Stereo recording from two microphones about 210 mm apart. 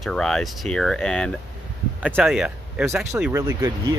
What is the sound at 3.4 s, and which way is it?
Speech, 20° right (ahead or behind).